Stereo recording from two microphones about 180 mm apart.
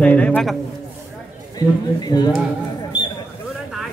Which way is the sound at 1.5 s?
20° left (ahead or behind).